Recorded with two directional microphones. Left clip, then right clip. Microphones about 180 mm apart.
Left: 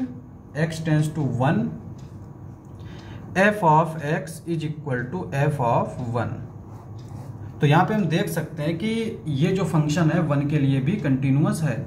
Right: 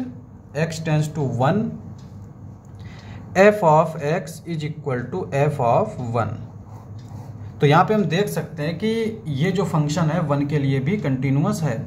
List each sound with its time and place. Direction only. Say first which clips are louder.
0.6 s speech: right 1 dB; 45° right (ahead or behind)
3.3 s speech: right 4 dB; 30° right (ahead or behind)
7.6 s speech: right 4 dB; 30° right (ahead or behind)